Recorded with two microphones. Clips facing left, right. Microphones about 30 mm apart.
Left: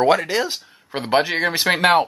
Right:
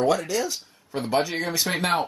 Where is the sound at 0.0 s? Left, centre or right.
Left.